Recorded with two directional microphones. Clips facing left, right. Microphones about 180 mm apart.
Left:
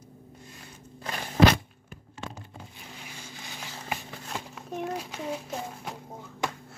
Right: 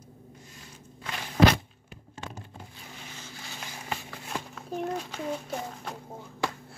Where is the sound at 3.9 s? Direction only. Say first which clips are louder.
Even; 15° left (ahead or behind).